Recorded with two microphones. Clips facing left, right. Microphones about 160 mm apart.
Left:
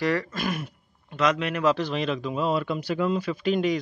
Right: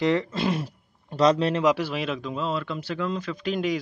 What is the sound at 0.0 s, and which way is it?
Speech, 20° right (ahead or behind).